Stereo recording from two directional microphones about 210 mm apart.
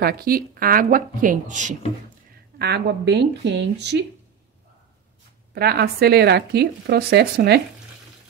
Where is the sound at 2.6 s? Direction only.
50° right (ahead or behind).